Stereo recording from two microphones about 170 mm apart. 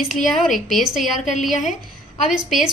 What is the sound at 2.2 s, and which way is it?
Speech, 5° right (ahead or behind).